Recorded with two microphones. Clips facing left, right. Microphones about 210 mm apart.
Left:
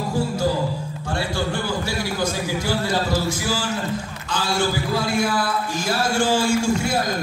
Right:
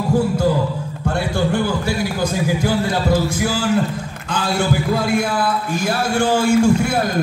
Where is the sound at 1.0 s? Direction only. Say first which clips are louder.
Right 5 dB; 55° right (ahead or behind).